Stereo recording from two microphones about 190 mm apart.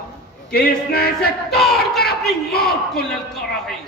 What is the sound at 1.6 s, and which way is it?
Speech, centre (ahead or behind).